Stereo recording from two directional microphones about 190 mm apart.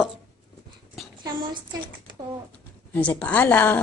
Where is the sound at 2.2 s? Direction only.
25° right (ahead or behind).